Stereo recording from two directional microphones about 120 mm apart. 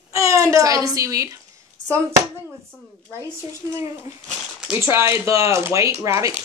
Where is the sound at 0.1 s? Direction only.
25° right (ahead or behind).